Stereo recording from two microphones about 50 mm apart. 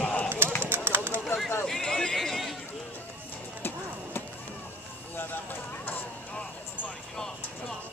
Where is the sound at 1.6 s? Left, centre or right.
Centre.